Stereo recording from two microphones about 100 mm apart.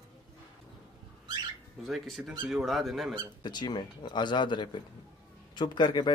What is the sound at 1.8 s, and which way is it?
Speech, centre (ahead or behind).